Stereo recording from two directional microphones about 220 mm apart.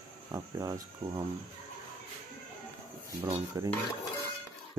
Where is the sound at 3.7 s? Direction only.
15° left (ahead or behind).